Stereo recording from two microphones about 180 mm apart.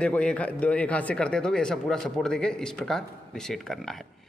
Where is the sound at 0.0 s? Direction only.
5° left (ahead or behind).